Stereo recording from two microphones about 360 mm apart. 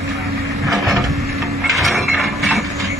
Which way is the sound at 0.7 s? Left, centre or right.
Centre.